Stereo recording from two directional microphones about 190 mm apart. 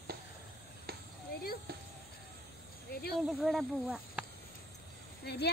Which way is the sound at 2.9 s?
55° left (ahead or behind).